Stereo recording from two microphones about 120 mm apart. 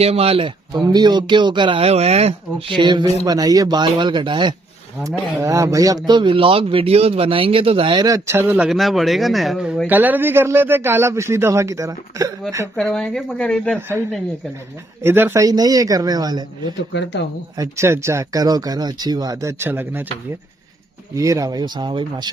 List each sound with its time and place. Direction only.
0.0 s speech: 55° right (ahead or behind)
0.7 s speech: 35° right (ahead or behind)
1.9 s speech: 60° right (ahead or behind)
2.7 s speech: 40° right (ahead or behind)
5.4 s a man's voice: 25° right (ahead or behind)
8.3 s speech: 20° right (ahead or behind)
8.5 s speech: centre (ahead or behind)
9.8 s speech: 15° right (ahead or behind)
12.9 s speech: 5° left (ahead or behind)
13.7 s speech: 20° right (ahead or behind)
15.0 s speech: 20° right (ahead or behind)
15.4 s speech: 30° right (ahead or behind)
17.6 s speech: 25° right (ahead or behind)
21.1 s speech: 25° right (ahead or behind)